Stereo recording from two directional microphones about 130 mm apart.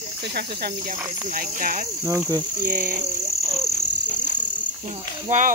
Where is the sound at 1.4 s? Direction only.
90° right.